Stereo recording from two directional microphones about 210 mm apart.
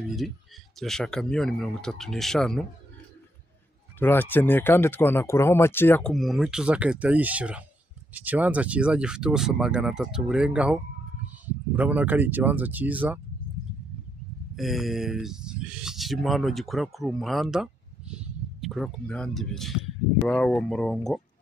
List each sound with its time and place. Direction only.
0.7 s speech: centre (ahead or behind)
4.0 s speech: 10° left (ahead or behind); by 13.2 s 5° right (ahead or behind)
14.5 s speech: centre (ahead or behind)